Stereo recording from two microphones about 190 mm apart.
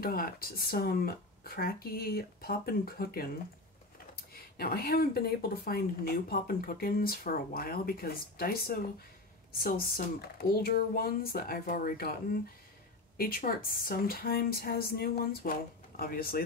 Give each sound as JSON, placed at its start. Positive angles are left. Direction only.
{"t": 0.0, "sound": "speech", "side_deg": 50}
{"t": 13.2, "sound": "speech", "side_deg": 50}